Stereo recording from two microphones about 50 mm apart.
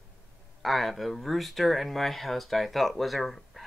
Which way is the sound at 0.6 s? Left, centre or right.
Centre.